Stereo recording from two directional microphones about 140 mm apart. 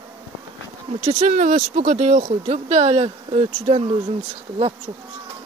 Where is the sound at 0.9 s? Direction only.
50° right (ahead or behind).